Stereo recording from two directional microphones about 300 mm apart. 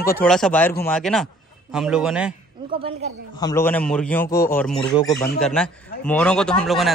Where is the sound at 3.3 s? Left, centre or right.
Centre.